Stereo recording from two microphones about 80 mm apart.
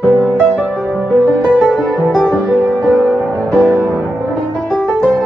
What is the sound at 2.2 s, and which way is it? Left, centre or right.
Music, centre.